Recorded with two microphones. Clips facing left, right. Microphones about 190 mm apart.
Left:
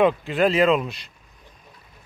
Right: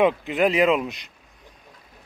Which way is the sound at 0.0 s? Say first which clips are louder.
Left 1 dB; 15° right (ahead or behind).